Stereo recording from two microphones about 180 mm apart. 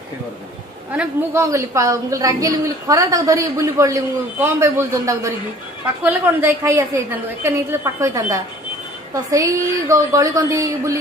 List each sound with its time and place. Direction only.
0.9 s a woman's voice: 15° right (ahead or behind)